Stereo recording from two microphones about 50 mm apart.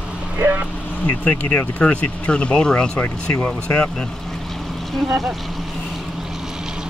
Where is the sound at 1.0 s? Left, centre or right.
Left.